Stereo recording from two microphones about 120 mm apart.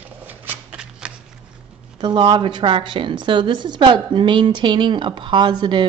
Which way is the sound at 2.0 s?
40° right (ahead or behind).